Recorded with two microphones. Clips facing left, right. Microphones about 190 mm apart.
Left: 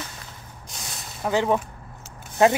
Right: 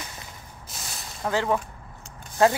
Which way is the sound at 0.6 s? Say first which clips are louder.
Left 1 dB; centre (ahead or behind).